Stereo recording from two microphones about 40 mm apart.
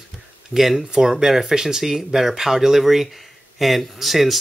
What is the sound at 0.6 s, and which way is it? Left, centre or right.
Speech, centre.